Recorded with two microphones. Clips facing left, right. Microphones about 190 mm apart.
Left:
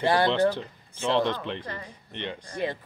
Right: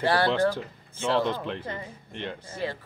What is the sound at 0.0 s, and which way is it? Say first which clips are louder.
Speech: left 1 dB; 15° left (ahead or behind).